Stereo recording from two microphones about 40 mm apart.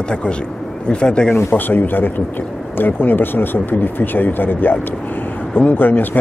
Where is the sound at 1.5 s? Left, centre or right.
Left.